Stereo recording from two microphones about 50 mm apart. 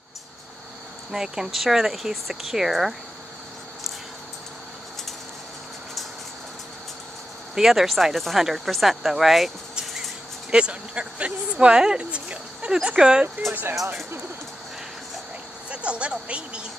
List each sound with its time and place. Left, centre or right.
1.1 s speech: centre
7.5 s speech: centre
10.5 s speech: right
13.5 s speech: right
15.7 s speech: right